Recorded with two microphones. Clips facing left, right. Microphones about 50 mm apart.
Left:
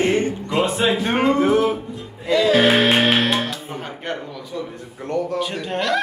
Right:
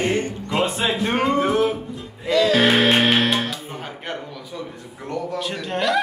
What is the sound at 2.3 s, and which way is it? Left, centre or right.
Speech, centre.